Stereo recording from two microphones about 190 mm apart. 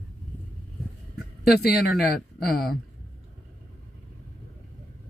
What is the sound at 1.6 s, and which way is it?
Speech, 55° left (ahead or behind).